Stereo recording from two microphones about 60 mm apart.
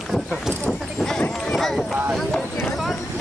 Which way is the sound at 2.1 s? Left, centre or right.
Centre.